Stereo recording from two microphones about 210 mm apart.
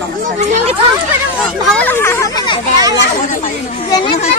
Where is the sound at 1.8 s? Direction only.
10° left (ahead or behind).